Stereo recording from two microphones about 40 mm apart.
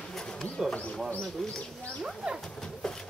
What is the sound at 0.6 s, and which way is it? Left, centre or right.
Speech, centre.